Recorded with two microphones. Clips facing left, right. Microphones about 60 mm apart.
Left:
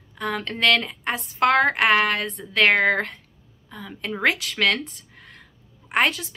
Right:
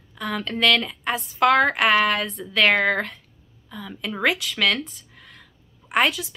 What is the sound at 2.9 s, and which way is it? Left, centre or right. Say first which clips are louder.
Speech: left 1 dB; left.